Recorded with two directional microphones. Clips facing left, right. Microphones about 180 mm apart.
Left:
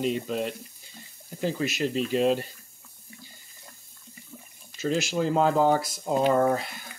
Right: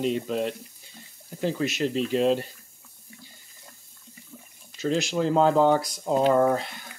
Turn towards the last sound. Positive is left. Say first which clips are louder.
# right 2 dB
turn(degrees=5)  # may be behind; listen again after turning